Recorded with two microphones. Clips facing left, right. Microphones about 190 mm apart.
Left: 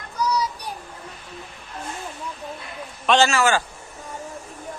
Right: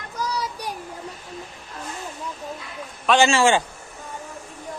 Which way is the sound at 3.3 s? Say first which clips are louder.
Right 2 dB; 25° right (ahead or behind).